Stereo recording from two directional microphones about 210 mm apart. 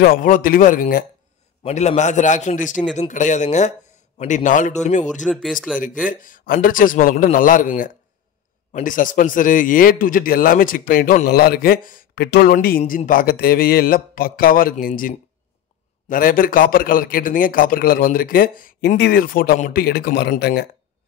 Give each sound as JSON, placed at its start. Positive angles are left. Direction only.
{"t": 0.0, "sound": "a man's voice", "side_deg": 40}
{"t": 5.3, "sound": "speech", "side_deg": 0}
{"t": 6.0, "sound": "a man's voice", "side_deg": 40}